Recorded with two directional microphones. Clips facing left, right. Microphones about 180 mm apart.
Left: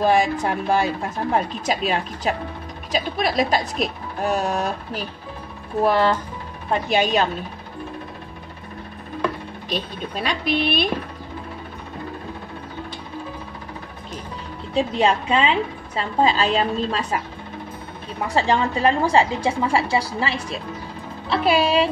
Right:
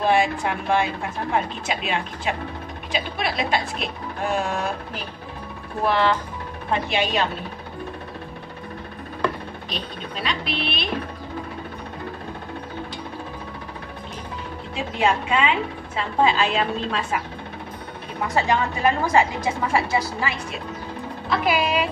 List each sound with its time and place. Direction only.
0.0 s speech: 40° left (ahead or behind)
5.9 s speech: 40° left (ahead or behind)
9.7 s speech: 45° left (ahead or behind)
14.7 s speech: 35° left (ahead or behind)
18.3 s a woman's voice: 30° left (ahead or behind)